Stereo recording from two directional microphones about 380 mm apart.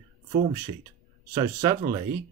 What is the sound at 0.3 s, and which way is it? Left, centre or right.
Speech, centre.